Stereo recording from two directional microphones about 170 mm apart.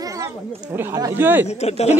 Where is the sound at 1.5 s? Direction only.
40° left (ahead or behind).